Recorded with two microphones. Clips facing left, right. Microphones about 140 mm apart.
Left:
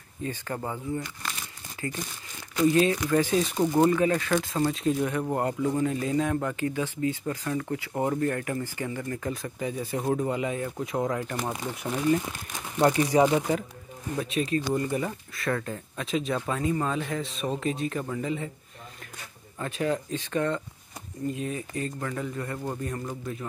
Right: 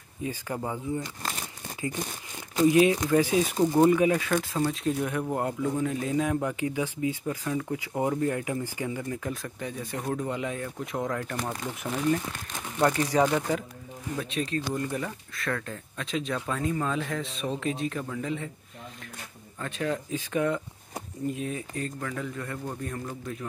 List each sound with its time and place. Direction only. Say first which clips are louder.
0.2 s speech: even; 10° right (ahead or behind)
2.6 s speech: right 2 dB; 10° right (ahead or behind)
9.3 s speech: left 3 dB; centre (ahead or behind)
10.0 s speech: left 4 dB; 15° left (ahead or behind)
10.3 s speech: left 3 dB; 5° left (ahead or behind)
19.6 s speech: left 2 dB; centre (ahead or behind)